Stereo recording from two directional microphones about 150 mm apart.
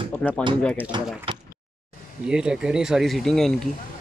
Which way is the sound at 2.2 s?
5° right (ahead or behind).